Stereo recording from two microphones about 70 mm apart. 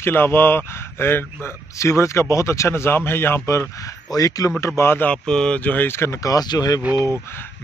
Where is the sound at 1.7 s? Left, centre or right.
Left.